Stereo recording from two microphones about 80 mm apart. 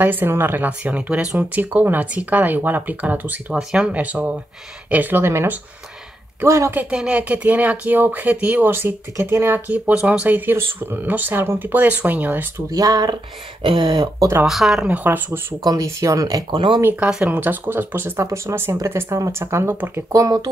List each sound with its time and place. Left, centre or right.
0.0 s speech: right
6.7 s speech: right
12.7 s speech: right
13.6 s speech: right
14.4 s speech: centre
14.9 s speech: right
15.6 s speech: right
16.5 s speech: right
17.1 s speech: centre
20.1 s speech: right